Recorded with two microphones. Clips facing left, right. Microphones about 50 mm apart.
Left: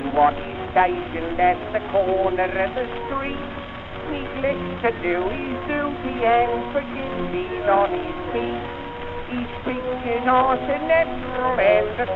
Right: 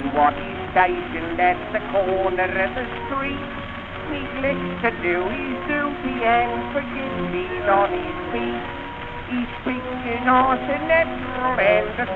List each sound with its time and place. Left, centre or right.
0.1 s a woman's voice: centre